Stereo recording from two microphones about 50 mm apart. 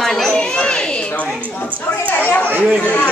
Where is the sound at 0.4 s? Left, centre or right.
Centre.